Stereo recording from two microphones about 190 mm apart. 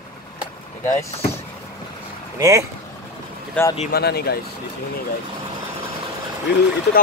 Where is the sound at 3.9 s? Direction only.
55° left (ahead or behind).